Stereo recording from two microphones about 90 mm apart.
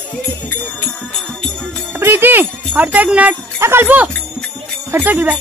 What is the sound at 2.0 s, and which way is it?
Speech, 25° right (ahead or behind).